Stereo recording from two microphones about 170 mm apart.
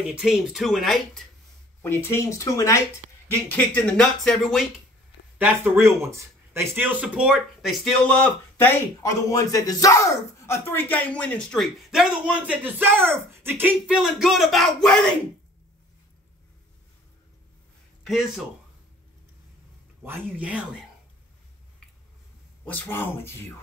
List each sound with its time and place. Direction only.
0.1 s speech: 5° right (ahead or behind)
1.8 s speech: 15° left (ahead or behind)
5.4 s speech: 10° right (ahead or behind); by 15.1 s 5° left (ahead or behind)
18.0 s speech: centre (ahead or behind)
20.0 s speech: 10° right (ahead or behind)
22.7 s speech: 10° left (ahead or behind)